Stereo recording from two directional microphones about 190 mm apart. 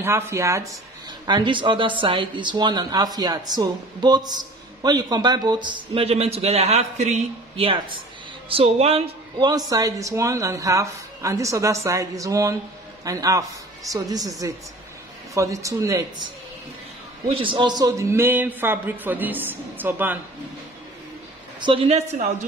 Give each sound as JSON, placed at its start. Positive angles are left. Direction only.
{"t": 0.0, "sound": "a man's voice", "side_deg": -15}
{"t": 9.5, "sound": "speech", "side_deg": -20}
{"t": 15.3, "sound": "speech", "side_deg": -15}
{"t": 17.3, "sound": "speech", "side_deg": -25}
{"t": 21.5, "sound": "a man's voice", "side_deg": -25}